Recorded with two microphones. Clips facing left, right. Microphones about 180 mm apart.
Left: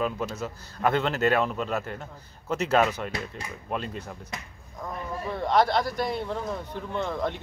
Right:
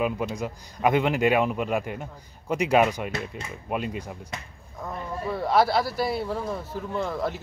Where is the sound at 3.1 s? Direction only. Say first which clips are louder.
Right 2 dB; 25° right (ahead or behind).